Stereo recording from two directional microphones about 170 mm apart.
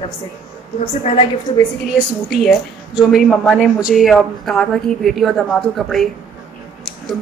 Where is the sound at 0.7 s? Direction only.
40° left (ahead or behind).